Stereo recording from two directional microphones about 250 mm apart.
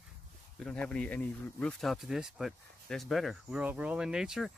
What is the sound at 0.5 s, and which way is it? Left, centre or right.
Speech, centre.